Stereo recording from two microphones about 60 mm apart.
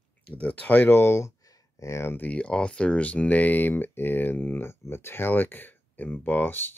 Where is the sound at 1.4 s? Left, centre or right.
Left.